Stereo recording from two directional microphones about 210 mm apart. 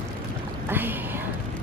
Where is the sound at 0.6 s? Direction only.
10° right (ahead or behind).